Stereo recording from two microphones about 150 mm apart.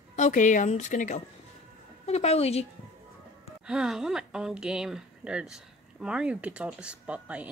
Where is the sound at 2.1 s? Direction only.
45° left (ahead or behind).